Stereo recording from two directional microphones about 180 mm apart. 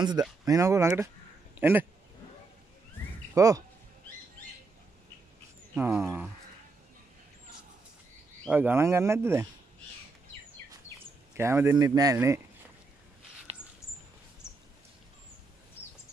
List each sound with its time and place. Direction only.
0.5 s speech: 15° right (ahead or behind)
3.3 s speech: 20° right (ahead or behind)
5.8 s speech: 10° right (ahead or behind)
8.5 s speech: 10° right (ahead or behind)
11.3 s speech: 15° right (ahead or behind)
13.5 s a sound: 35° right (ahead or behind)